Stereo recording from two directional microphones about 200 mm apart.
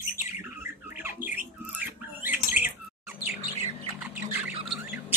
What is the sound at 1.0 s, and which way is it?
Squawk, 10° right (ahead or behind).